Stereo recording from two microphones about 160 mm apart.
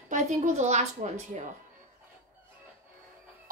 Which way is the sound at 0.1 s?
45° right (ahead or behind).